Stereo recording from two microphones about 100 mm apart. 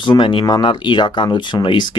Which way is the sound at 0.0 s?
55° left (ahead or behind).